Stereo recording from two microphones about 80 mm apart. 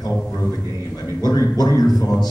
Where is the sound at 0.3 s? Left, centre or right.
Left.